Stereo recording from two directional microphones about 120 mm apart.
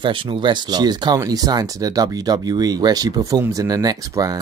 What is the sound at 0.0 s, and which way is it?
Speech, 45° right (ahead or behind).